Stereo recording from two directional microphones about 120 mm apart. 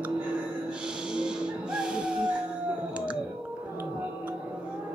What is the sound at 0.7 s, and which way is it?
Music, 10° right (ahead or behind).